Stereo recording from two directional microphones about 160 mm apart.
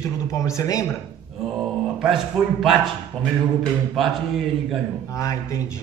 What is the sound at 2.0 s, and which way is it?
A man's voice, 5° right (ahead or behind).